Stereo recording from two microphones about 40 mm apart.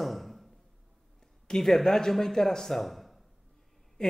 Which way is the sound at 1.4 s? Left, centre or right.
Centre.